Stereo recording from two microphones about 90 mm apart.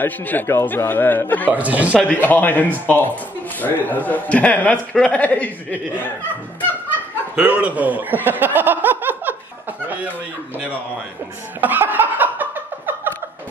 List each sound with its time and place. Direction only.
0.0 s a man's voice: 20° left (ahead or behind)
1.5 s speech: 15° right (ahead or behind)
2.2 s a man's voice: 20° left (ahead or behind)
7.3 s speech: 15° right (ahead or behind)
9.8 s chuckle: 20° right (ahead or behind)
11.6 s a sound: 20° right (ahead or behind)